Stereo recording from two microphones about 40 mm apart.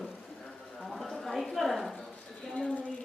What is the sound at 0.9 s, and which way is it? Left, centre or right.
A man's voice, centre.